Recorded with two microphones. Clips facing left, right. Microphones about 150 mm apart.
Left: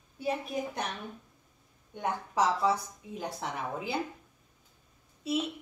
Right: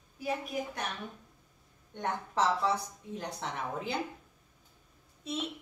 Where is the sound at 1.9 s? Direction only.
10° left (ahead or behind).